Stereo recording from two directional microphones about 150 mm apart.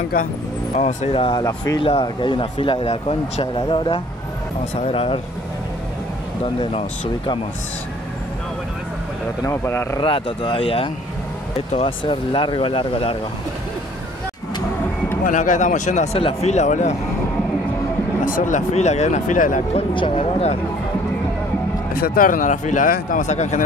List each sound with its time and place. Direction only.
0.7 s speech: 45° left (ahead or behind)
6.4 s speech: 35° left (ahead or behind)
9.4 s a man's voice: 20° left (ahead or behind)
9.9 s speech: 35° left (ahead or behind)
15.2 s speech: 60° left (ahead or behind)
18.2 s speech: 60° left (ahead or behind)
19.9 s speech: 35° left (ahead or behind)
21.9 s speech: 80° left; by 23.6 s 50° left (ahead or behind)